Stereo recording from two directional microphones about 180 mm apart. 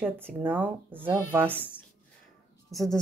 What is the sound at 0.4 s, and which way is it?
Speech, 10° right (ahead or behind).